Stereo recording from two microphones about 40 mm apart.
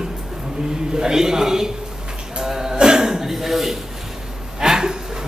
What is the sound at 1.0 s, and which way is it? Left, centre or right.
Speech, centre.